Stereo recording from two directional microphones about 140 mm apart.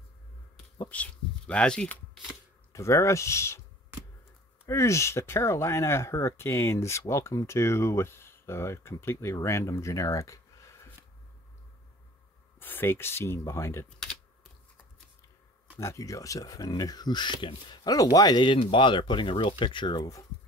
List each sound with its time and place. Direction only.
0.7 s speech: 10° left (ahead or behind)
2.7 s speech: 20° left (ahead or behind)
4.6 s speech: 20° left (ahead or behind)
12.5 s speech: 15° left (ahead or behind)
15.8 s speech: 20° left (ahead or behind)